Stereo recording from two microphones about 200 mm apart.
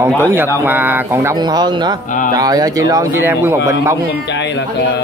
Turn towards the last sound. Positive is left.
turn(degrees=-10)  # may be behind; listen again after turning